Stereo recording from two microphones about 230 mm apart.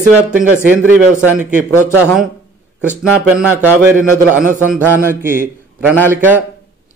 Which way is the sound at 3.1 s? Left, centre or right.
Centre.